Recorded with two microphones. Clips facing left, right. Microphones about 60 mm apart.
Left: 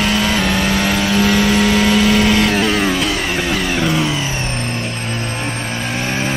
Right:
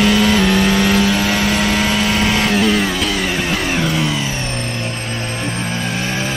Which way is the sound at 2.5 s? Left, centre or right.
Left.